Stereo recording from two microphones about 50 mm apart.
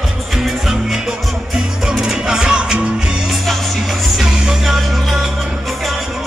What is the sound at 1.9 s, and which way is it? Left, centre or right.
Music, centre.